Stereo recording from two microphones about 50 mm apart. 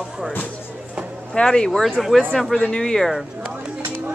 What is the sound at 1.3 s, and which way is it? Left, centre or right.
Speech, centre.